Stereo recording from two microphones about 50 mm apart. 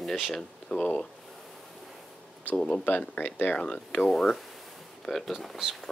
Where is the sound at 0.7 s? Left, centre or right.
Left.